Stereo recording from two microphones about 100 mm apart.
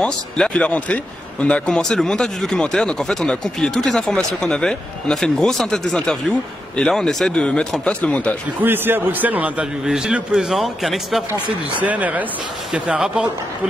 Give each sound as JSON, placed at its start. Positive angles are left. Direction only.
{"t": 0.0, "sound": "speech", "side_deg": 10}
{"t": 8.5, "sound": "a man's voice", "side_deg": -20}
{"t": 11.8, "sound": "a man's voice", "side_deg": -15}